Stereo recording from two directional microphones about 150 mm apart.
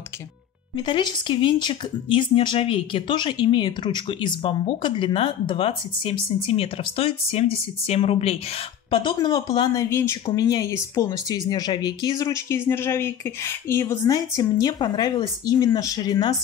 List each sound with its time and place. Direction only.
0.8 s speech: 30° left (ahead or behind)
8.9 s speech: 30° left (ahead or behind)